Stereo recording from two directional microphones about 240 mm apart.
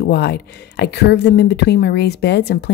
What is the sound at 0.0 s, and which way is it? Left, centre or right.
Speech, left.